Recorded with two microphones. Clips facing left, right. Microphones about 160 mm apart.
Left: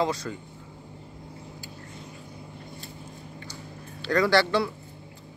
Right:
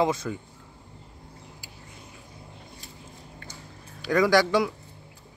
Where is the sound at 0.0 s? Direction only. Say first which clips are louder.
Right 2 dB; 20° right (ahead or behind).